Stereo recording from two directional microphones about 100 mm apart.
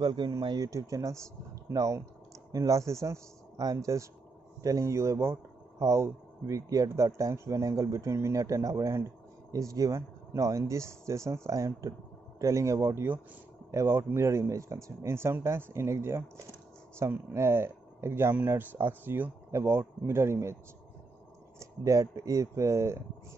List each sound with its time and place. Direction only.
0.0 s speech: 50° right (ahead or behind); by 20.5 s 25° right (ahead or behind)
21.5 s speech: 30° right (ahead or behind)